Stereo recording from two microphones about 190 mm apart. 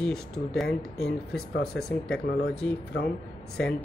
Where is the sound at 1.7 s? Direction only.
5° left (ahead or behind).